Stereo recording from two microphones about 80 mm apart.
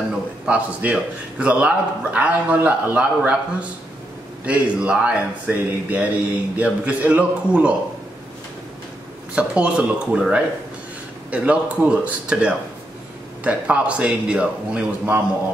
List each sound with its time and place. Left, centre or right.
0.8 s a man's voice: centre
4.5 s speech: centre
9.3 s speech: centre